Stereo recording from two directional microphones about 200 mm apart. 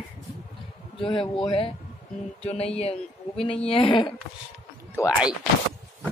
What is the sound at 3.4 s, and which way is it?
Speech, 30° left (ahead or behind).